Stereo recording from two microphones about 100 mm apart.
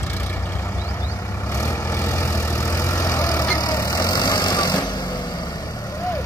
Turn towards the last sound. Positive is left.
turn(degrees=35)  # may be behind; listen again after turning